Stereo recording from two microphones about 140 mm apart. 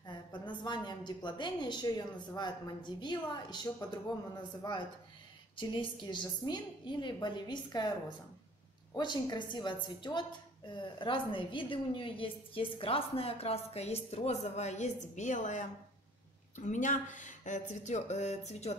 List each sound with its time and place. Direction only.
0.0 s a woman's voice: 35° left (ahead or behind)
5.6 s a woman's voice: 35° left (ahead or behind)
8.9 s a woman's voice: 30° left (ahead or behind); by 18.8 s 50° left (ahead or behind)